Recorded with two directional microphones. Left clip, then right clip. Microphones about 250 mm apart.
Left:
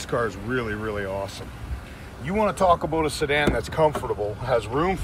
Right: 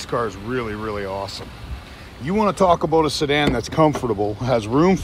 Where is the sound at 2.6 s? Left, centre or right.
Right.